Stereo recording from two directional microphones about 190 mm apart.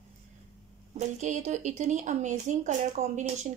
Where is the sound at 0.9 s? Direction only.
40° right (ahead or behind).